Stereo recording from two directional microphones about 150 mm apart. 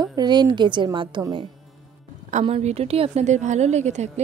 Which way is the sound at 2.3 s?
45° right (ahead or behind).